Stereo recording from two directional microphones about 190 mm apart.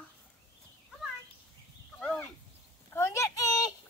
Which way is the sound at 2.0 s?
5° left (ahead or behind).